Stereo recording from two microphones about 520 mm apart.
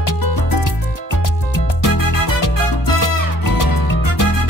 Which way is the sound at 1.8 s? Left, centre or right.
Left.